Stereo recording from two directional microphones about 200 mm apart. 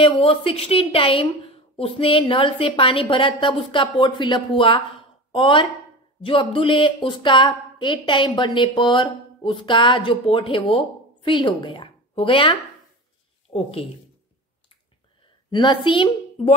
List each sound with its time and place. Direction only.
0.0 s a woman's voice: 25° left (ahead or behind)
15.5 s a woman's voice: 25° left (ahead or behind)